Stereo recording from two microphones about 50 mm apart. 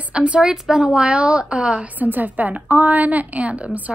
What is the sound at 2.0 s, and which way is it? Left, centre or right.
A woman's voice, right.